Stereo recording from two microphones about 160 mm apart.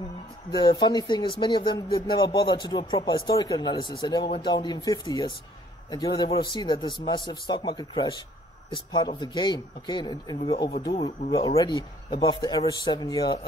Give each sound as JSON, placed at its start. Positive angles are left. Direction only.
{"t": 0.6, "sound": "speech", "side_deg": 25}